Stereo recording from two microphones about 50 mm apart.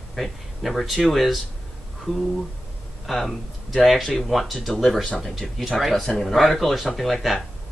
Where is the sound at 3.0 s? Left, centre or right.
Centre.